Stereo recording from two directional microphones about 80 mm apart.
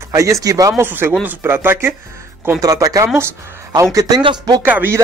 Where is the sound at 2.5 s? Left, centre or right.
Right.